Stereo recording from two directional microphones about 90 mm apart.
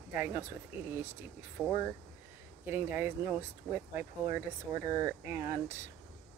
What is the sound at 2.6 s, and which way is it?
Speech, 25° right (ahead or behind).